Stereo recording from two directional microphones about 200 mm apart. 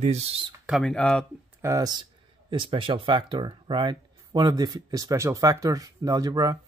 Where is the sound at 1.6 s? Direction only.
15° right (ahead or behind).